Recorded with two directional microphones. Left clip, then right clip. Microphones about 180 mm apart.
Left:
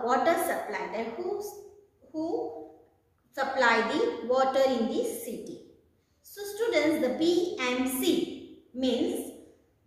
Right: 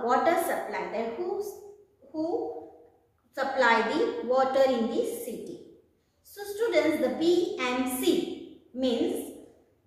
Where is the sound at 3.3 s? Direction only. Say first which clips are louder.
Right 1 dB; 10° left (ahead or behind).